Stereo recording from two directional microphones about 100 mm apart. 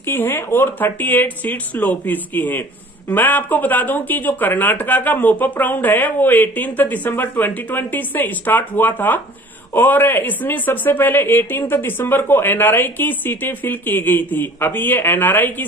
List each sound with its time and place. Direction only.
0.0 s speech: 20° left (ahead or behind)